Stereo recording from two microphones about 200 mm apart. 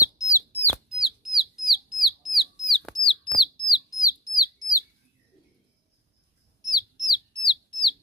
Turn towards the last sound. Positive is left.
turn(degrees=25)  # may be behind; listen again after turning